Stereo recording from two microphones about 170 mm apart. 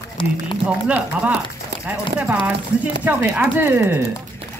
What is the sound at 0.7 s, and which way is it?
A woman's voice, 5° right (ahead or behind).